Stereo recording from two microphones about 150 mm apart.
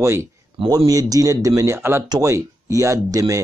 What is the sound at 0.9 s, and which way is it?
Speech, 25° right (ahead or behind).